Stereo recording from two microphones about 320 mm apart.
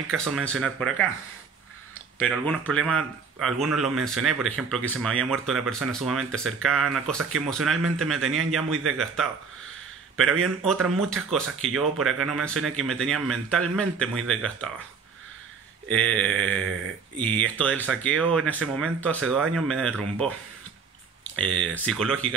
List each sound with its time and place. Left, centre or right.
0.1 s speech: centre
2.1 s speech: centre
10.4 s speech: centre
15.9 s speech: centre
21.5 s speech: right
21.7 s speech: centre